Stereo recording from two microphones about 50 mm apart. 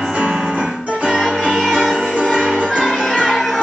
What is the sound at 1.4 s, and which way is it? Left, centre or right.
Music, centre.